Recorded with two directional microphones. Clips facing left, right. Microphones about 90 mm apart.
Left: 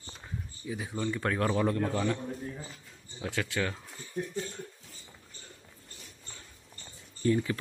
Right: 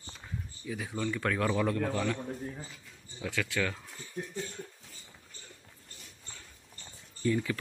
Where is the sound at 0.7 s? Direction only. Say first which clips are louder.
Left 1 dB; 20° left (ahead or behind).